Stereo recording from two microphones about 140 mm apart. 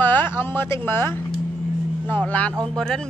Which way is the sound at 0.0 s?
15° left (ahead or behind).